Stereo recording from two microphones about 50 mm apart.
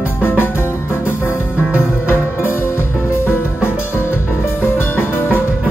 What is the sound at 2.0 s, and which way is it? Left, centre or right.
Music, left.